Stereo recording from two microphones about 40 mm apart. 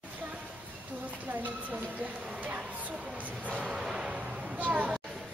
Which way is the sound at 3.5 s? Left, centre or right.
Right.